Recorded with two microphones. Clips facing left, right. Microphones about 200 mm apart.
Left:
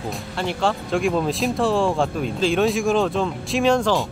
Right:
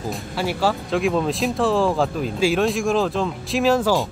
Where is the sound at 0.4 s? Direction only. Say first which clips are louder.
Right 1 dB; 5° right (ahead or behind).